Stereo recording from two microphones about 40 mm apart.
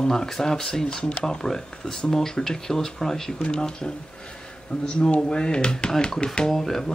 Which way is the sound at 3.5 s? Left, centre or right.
Left.